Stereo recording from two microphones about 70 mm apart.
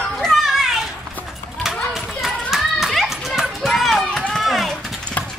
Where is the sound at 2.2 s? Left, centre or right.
Centre.